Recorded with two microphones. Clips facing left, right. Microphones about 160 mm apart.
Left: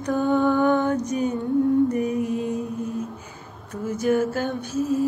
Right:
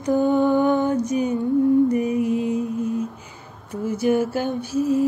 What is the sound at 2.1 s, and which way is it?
Mantra, 40° left (ahead or behind).